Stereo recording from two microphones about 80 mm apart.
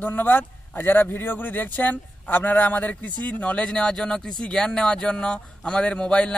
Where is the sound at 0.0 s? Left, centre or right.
Left.